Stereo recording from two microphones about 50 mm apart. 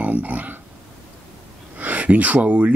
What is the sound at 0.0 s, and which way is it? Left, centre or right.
Speech, right.